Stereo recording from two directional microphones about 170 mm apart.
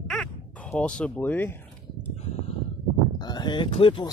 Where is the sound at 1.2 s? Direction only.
10° left (ahead or behind).